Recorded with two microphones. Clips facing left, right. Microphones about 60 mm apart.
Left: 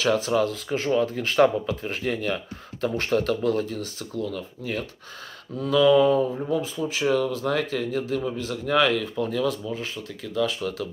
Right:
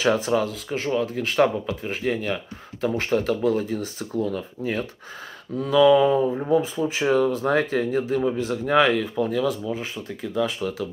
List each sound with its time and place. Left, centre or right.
0.0 s speech: right
0.4 s speech: centre; by 4.8 s right
5.6 s speech: centre
9.1 s speech: centre
9.7 s speech: right